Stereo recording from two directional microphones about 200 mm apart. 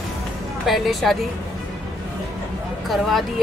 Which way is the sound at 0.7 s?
Centre (ahead or behind).